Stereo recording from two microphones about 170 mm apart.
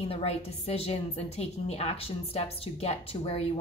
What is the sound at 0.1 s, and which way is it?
A woman's voice, 35° left (ahead or behind).